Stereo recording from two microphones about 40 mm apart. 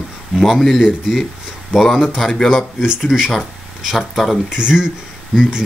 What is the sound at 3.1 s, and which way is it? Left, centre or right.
A man's voice, centre.